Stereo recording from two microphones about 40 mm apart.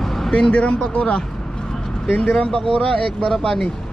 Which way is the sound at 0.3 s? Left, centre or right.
Left.